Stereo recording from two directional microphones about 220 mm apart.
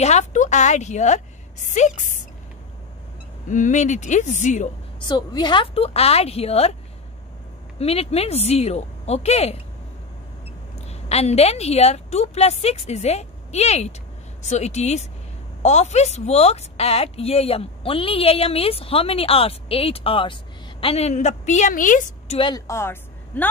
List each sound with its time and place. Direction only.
0.0 s a woman's voice: 30° left (ahead or behind)
3.4 s a woman's voice: 35° left (ahead or behind)
5.0 s a woman's voice: 20° left (ahead or behind)
7.8 s a woman's voice: 25° left (ahead or behind)
10.8 s a woman's voice: 30° left (ahead or behind)
22.4 s speech: 15° left (ahead or behind)